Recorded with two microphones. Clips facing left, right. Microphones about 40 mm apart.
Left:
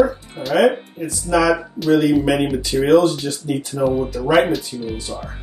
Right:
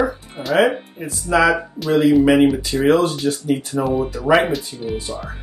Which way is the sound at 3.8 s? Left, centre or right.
Centre.